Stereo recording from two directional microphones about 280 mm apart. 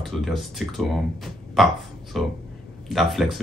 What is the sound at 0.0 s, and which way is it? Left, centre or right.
Speech, centre.